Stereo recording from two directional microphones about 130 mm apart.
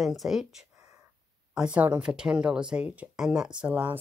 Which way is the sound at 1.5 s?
10° right (ahead or behind).